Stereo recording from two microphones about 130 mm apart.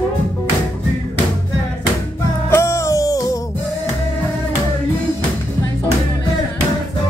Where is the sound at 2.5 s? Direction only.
20° left (ahead or behind).